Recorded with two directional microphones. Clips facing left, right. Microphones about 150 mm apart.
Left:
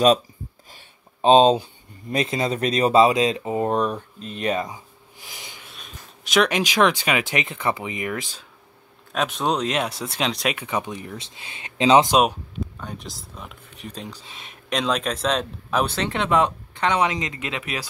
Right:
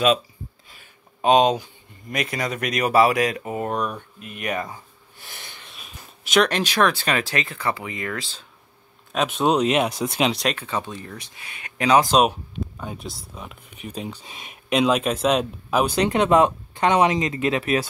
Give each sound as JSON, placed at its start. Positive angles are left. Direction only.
{"t": 0.7, "sound": "speech", "side_deg": 30}
{"t": 5.7, "sound": "a sound", "side_deg": 0}
{"t": 6.4, "sound": "speech", "side_deg": 10}
{"t": 9.1, "sound": "speech", "side_deg": 0}
{"t": 10.4, "sound": "speech", "side_deg": 10}
{"t": 12.1, "sound": "speech", "side_deg": 0}
{"t": 17.4, "sound": "speech", "side_deg": -40}